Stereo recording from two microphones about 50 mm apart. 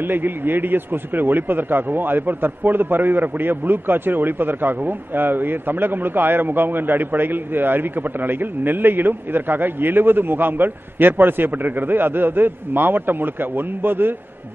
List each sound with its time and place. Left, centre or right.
0.0 s a man's voice: right